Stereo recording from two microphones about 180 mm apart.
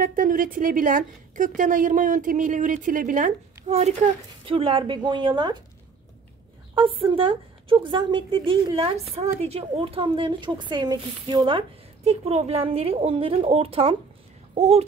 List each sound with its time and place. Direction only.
0.0 s a woman's voice: 50° right (ahead or behind); by 5.6 s 25° right (ahead or behind)
6.7 s speech: 30° right (ahead or behind)
14.5 s a sound: 35° right (ahead or behind)